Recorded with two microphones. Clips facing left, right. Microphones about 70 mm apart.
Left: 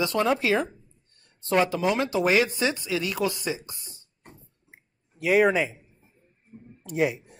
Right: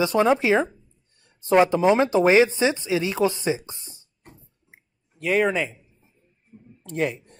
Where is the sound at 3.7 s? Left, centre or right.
Right.